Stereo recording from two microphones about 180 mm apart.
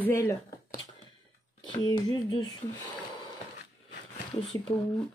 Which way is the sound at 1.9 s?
25° left (ahead or behind).